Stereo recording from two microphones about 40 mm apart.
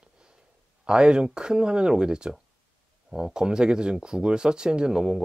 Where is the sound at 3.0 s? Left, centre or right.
Centre.